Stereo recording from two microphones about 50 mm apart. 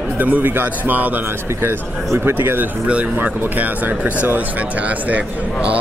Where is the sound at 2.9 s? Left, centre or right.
Right.